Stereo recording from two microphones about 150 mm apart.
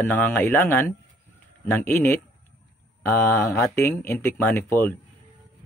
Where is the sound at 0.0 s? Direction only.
15° left (ahead or behind).